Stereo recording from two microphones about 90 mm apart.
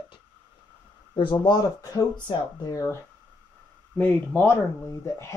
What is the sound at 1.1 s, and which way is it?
Speech, 70° left (ahead or behind).